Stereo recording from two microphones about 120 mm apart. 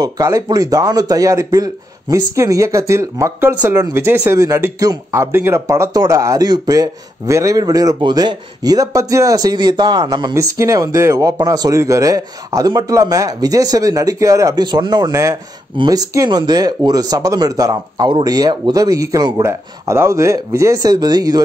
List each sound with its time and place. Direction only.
0.0 s speech: 30° right (ahead or behind)
10.3 s speech: 25° right (ahead or behind)